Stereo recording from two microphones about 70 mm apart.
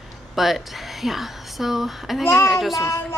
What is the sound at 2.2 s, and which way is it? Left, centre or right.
Speech, left.